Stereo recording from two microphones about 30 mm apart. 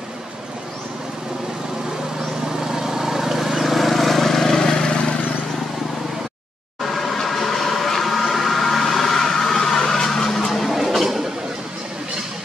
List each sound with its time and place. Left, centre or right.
2.6 s vehicle: centre
4.6 s vehicle: left
6.8 s train: centre
9.8 s a sound: left; by 11.2 s centre